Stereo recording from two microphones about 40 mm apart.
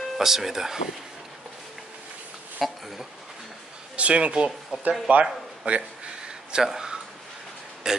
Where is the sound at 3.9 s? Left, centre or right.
Right.